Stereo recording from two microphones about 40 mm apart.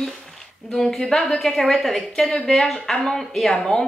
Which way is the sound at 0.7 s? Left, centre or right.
Centre.